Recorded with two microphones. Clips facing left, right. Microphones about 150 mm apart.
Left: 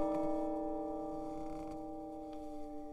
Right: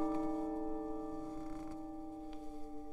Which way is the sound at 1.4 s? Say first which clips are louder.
Left 2 dB; 15° left (ahead or behind).